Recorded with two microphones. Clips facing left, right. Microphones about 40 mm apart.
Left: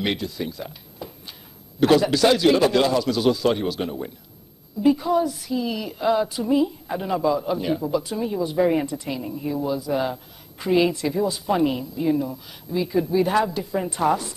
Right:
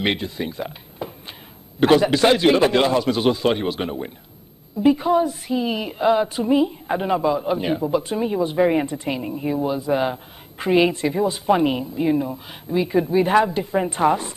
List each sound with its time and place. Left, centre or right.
0.0 s a woman's voice: right